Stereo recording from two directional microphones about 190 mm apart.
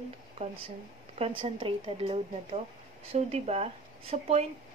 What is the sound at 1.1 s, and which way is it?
A woman's voice, 30° right (ahead or behind).